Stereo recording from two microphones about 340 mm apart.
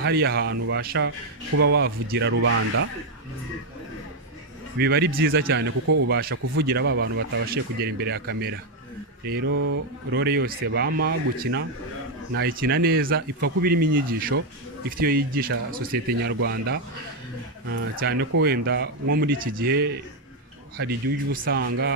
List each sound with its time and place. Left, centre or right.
0.0 s speech: right
4.7 s speech: right